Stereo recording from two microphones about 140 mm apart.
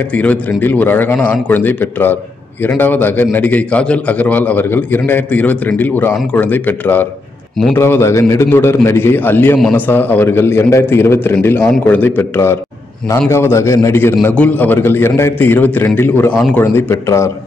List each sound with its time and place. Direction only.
0.1 s a man's voice: 10° left (ahead or behind)